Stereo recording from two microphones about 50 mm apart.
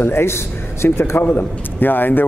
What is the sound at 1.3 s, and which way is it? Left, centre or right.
Speech, left.